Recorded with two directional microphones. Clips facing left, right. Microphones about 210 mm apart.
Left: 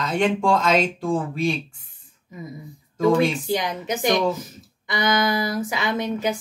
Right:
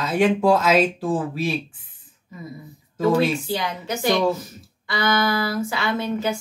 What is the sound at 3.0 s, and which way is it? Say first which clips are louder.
Speech: left 1 dB; 5° right (ahead or behind).